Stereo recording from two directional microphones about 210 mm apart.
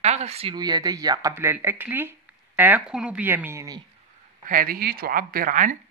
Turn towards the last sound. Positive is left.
turn(degrees=-40)  # may be behind; listen again after turning